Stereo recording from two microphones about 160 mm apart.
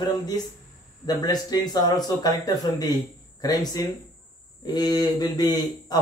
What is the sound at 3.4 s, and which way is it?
Speech, 25° left (ahead or behind).